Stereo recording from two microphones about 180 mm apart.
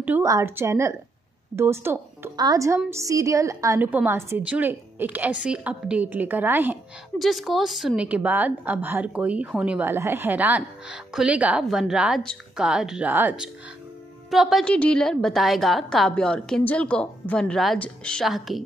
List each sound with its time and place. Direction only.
0.0 s a woman's voice: 15° right (ahead or behind)
7.2 s a woman's voice: centre (ahead or behind)